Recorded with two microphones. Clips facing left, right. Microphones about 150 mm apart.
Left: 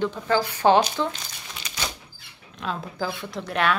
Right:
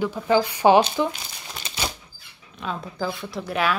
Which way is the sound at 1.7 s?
30° right (ahead or behind).